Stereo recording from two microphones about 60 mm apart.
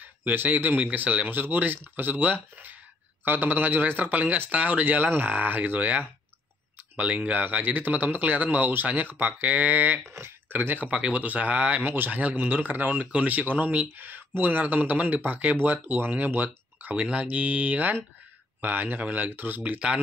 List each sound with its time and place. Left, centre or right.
0.0 s speech: right
10.1 s speech: right
10.9 s speech: centre
16.9 s speech: centre